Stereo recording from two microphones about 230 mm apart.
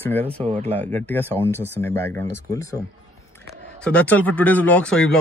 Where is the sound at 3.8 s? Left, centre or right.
Centre.